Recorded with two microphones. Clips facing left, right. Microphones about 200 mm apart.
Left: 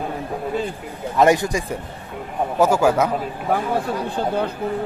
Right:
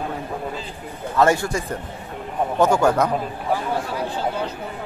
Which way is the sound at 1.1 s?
15° left (ahead or behind).